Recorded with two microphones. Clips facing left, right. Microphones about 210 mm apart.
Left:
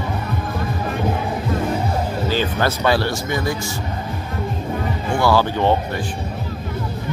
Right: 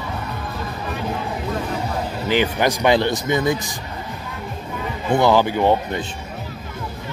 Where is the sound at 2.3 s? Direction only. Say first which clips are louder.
Right 4 dB; 15° right (ahead or behind).